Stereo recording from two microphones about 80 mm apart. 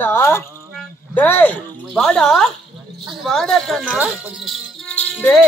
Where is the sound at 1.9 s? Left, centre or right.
Centre.